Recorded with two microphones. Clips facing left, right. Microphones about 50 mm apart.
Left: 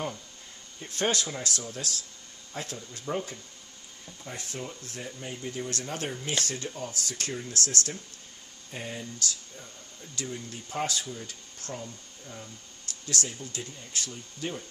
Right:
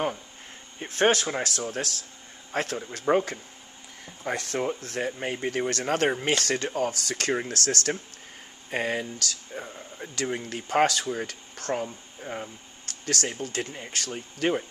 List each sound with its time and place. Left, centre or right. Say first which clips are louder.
0.7 s speech: right 6 dB; right
2.5 s speech: right 9 dB; right
4.2 s speech: right 10 dB; right
8.6 s speech: right 10 dB; right